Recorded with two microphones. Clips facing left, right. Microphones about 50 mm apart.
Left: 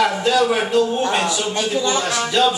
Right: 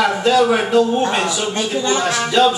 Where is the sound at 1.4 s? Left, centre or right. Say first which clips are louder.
Right 1 dB; right.